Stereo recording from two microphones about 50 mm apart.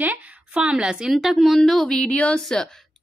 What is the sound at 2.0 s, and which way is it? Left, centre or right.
Speech, left.